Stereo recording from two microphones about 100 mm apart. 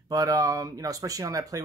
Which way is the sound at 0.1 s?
35° right (ahead or behind).